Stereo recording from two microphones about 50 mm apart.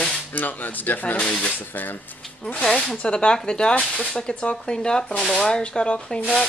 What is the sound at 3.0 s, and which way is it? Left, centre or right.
Speech, left.